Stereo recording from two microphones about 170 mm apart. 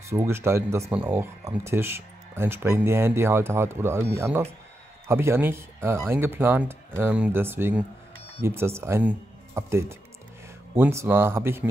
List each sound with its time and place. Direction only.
0.1 s speech: 15° right (ahead or behind)